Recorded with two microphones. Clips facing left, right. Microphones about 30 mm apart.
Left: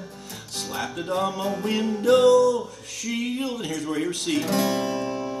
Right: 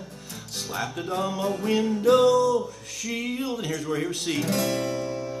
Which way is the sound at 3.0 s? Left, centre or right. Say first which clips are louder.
Left 2 dB; centre.